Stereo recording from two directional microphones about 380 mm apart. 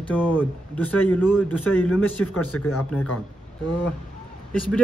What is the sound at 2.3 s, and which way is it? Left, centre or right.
Speech, left.